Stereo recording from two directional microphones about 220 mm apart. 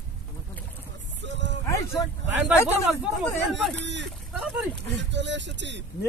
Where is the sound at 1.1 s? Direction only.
55° right (ahead or behind).